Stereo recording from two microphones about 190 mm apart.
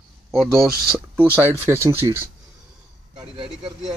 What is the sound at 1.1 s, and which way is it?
Speech, 10° right (ahead or behind).